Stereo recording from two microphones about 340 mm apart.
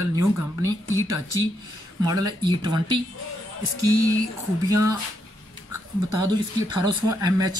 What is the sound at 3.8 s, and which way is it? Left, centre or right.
Speech, right.